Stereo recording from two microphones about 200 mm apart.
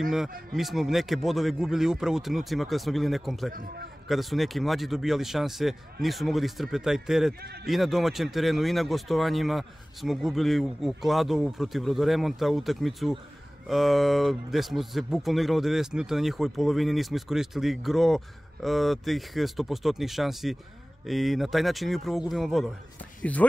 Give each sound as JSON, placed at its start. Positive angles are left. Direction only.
{"t": 0.5, "sound": "speech", "side_deg": 0}
{"t": 3.5, "sound": "a man's voice", "side_deg": -50}
{"t": 4.1, "sound": "speech", "side_deg": 0}